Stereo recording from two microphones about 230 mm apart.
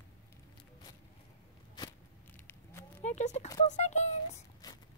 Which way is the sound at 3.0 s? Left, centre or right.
Left.